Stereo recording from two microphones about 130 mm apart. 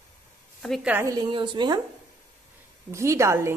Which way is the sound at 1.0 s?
30° right (ahead or behind).